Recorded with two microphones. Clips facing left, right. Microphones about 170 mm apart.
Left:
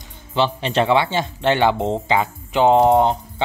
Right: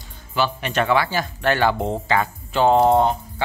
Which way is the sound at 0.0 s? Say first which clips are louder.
Left 3 dB; 25° left (ahead or behind).